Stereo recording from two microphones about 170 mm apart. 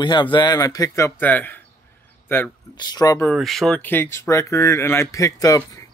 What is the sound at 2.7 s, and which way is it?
Speech, 25° left (ahead or behind).